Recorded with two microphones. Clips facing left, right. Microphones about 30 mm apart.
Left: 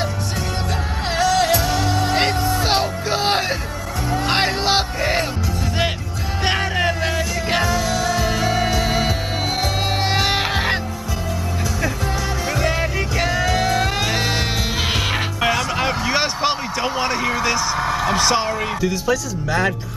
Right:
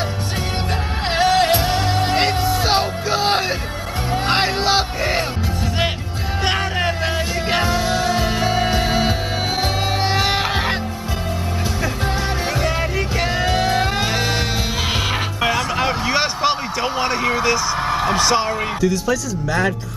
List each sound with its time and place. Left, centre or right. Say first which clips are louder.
1.1 s music: right 2 dB; right
2.6 s music: right 1 dB; centre
6.4 s music: left 1 dB; centre
7.6 s music: right 1 dB; right
8.4 s music: right 1 dB; right
10.0 s music: even; centre
13.3 s music: right 1 dB; right
15.4 s a sound: right 1 dB; centre
17.7 s a sound: right 1 dB; right
18.1 s speech: right 1 dB; centre